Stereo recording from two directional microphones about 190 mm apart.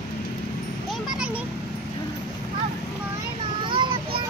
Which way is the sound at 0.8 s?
5° right (ahead or behind).